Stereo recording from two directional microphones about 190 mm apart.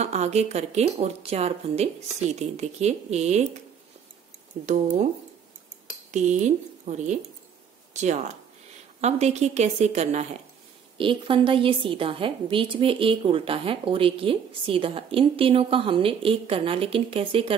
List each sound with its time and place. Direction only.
0.0 s speech: 35° right (ahead or behind)
4.6 s speech: 40° right (ahead or behind)
6.1 s a woman's voice: 40° right (ahead or behind)